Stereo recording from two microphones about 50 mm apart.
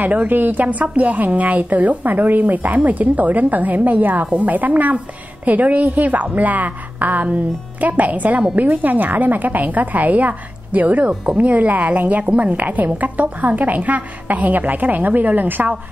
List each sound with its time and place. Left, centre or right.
0.0 s a woman's voice: right